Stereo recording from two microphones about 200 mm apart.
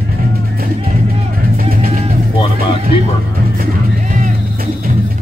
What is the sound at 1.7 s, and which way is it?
Music, 35° right (ahead or behind).